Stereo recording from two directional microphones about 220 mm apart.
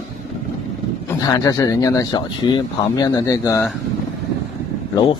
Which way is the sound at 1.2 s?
15° left (ahead or behind).